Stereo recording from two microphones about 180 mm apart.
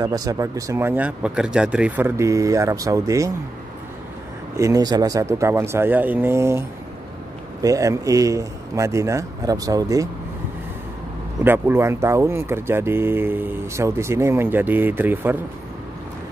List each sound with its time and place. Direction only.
0.0 s speech: 20° right (ahead or behind)
4.6 s speech: 20° right (ahead or behind)
7.6 s speech: 20° right (ahead or behind)
11.4 s speech: 10° right (ahead or behind)